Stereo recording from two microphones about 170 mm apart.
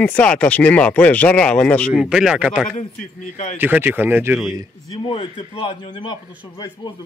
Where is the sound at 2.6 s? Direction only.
50° left (ahead or behind).